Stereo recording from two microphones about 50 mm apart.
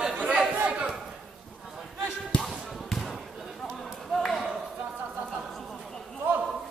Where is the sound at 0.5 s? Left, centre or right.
Right.